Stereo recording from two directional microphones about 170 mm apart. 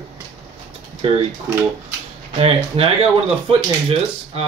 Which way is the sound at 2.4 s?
35° right (ahead or behind).